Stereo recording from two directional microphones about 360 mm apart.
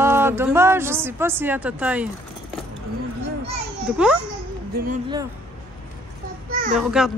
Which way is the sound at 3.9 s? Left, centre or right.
Centre.